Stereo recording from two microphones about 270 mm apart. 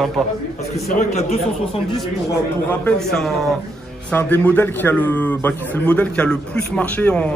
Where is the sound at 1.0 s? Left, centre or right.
Left.